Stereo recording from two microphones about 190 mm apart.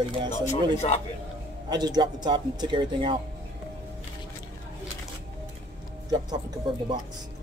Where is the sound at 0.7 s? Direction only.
35° left (ahead or behind).